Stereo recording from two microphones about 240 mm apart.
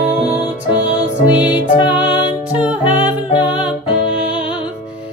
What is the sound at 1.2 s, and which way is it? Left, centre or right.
Music, centre.